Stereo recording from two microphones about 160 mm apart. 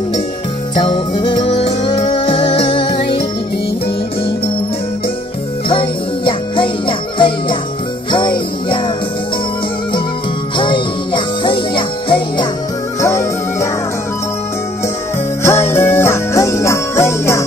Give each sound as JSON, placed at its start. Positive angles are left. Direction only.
{"t": 0.7, "sound": "music", "side_deg": 35}
{"t": 5.7, "sound": "jingle bell", "side_deg": 35}
{"t": 10.6, "sound": "music", "side_deg": 30}
{"t": 13.0, "sound": "music", "side_deg": 20}
{"t": 15.4, "sound": "jingle bell", "side_deg": 15}